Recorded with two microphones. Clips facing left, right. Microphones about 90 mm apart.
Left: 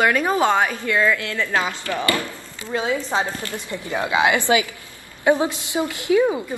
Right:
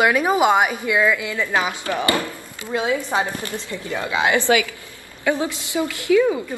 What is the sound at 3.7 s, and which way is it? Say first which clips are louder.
A woman's voice: left 3 dB; 20° left (ahead or behind).